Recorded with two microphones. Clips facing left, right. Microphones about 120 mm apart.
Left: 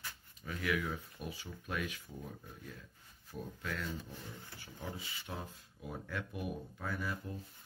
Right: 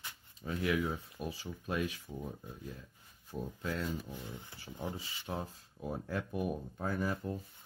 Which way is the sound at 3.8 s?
15° right (ahead or behind).